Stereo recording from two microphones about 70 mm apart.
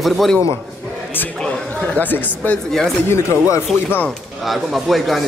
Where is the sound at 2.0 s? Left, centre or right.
Left.